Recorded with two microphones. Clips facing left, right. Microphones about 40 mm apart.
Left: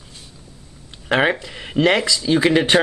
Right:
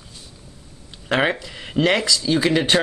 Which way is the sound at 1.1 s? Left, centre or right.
Centre.